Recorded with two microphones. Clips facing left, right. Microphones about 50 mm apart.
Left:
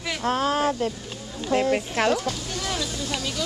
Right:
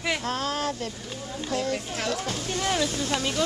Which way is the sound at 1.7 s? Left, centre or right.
Left.